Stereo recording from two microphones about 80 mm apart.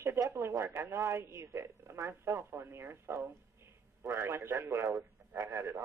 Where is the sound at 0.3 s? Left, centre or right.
Right.